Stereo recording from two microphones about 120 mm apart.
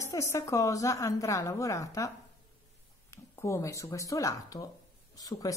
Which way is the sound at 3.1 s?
25° left (ahead or behind).